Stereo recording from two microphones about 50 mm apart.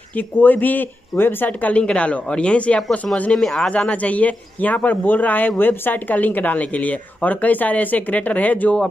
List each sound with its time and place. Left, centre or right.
0.1 s speech: left
1.6 s speech: left
3.3 s speech: centre
3.9 s speech: left